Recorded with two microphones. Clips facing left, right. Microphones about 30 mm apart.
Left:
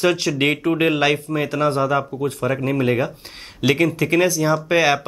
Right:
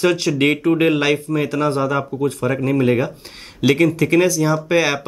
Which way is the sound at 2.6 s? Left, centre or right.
Centre.